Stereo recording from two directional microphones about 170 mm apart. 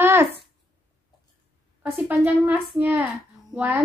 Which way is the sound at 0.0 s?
15° right (ahead or behind).